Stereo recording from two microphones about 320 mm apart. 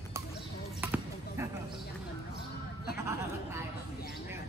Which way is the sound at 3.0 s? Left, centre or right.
Centre.